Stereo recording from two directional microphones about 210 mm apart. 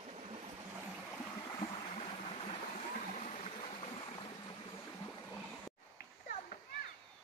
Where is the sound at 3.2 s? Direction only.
30° left (ahead or behind).